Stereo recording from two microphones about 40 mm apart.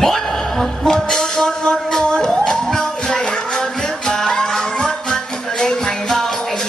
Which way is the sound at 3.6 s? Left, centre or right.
Centre.